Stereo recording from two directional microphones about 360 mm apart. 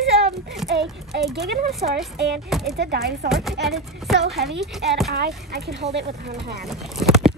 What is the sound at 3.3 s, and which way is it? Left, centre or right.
Speech, centre.